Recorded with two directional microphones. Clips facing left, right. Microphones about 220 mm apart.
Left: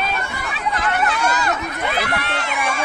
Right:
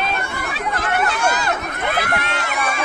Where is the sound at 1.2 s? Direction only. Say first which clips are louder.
Even; 50° right (ahead or behind).